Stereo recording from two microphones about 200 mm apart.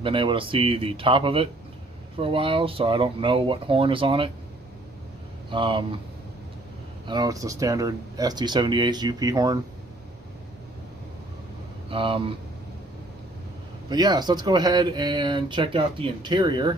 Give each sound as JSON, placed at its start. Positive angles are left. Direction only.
{"t": 0.0, "sound": "speech", "side_deg": -25}
{"t": 5.5, "sound": "speech", "side_deg": -25}
{"t": 7.1, "sound": "speech", "side_deg": -20}
{"t": 11.9, "sound": "speech", "side_deg": -25}
{"t": 13.8, "sound": "speech", "side_deg": -20}